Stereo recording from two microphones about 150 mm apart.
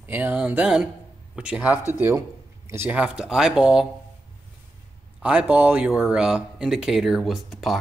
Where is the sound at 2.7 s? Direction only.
15° right (ahead or behind).